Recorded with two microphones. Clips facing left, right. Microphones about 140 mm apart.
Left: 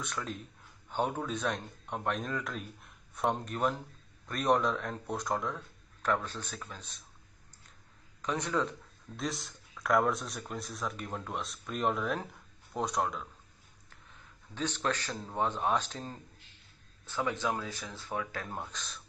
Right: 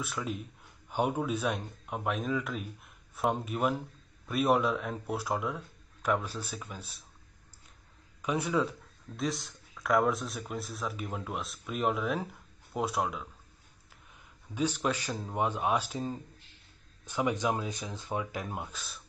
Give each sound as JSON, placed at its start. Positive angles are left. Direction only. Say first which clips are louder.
{"t": 0.0, "sound": "speech", "louder": "right 3 dB", "side_deg": -5}
{"t": 8.2, "sound": "a man's voice", "louder": "right 3 dB", "side_deg": -10}